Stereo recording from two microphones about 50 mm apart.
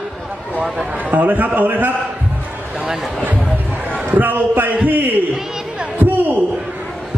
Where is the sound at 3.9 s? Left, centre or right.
Right.